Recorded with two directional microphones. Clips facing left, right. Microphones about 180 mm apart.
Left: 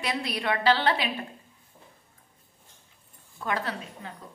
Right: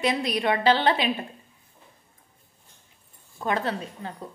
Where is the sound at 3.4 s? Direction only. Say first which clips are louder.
Right 4 dB; 25° right (ahead or behind).